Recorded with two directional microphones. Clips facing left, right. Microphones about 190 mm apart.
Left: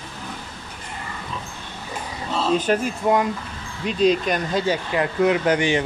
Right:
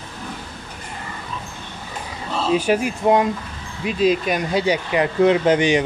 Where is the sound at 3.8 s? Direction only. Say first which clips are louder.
Even; 5° right (ahead or behind).